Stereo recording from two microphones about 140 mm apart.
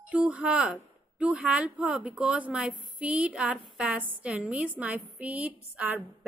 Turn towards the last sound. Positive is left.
turn(degrees=-10)  # may be behind; listen again after turning